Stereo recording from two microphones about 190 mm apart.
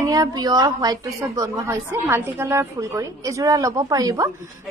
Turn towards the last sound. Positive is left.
turn(degrees=-20)  # may be behind; listen again after turning